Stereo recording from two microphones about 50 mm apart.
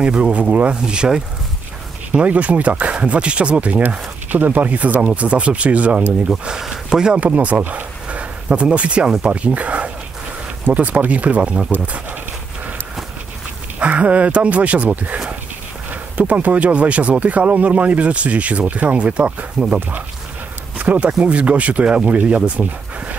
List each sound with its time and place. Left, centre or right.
0.0 s speech: right
2.1 s speech: right
6.2 s speech: centre
7.2 s speech: right
13.7 s speech: right
19.6 s speech: centre
20.7 s a sound: right
21.2 s speech: right